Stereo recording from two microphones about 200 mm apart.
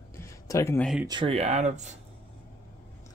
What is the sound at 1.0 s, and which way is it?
Speech, 25° right (ahead or behind).